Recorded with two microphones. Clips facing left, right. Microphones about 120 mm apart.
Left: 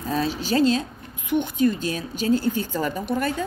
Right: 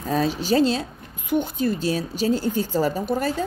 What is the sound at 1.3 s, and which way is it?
A woman's voice, 40° right (ahead or behind).